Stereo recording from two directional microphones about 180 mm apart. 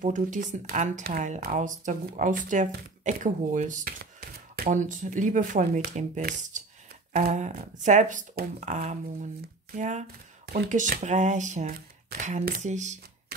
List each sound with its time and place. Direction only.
0.0 s speech: 45° right (ahead or behind)
4.0 s speech: 55° right (ahead or behind)
10.4 s speech: 55° right (ahead or behind)